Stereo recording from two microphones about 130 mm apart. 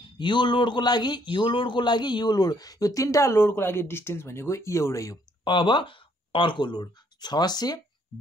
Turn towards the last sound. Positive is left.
turn(degrees=30)  # may be behind; listen again after turning